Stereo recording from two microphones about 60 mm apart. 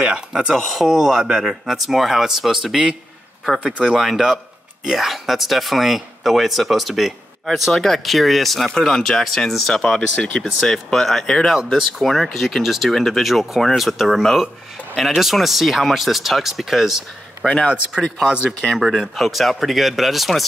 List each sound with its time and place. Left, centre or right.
0.0 s speech: centre
0.6 s speech: centre
3.6 s speech: centre
3.9 s speech: centre
10.1 s speech: left
10.4 s speech: centre
17.6 s speech: centre
18.8 s speech: centre